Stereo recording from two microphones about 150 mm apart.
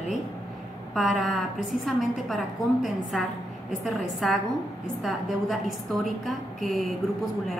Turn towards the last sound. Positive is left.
turn(degrees=0)  # may be behind; listen again after turning